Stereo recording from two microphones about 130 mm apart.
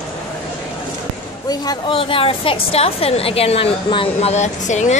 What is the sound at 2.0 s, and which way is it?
A woman's voice, 45° left (ahead or behind).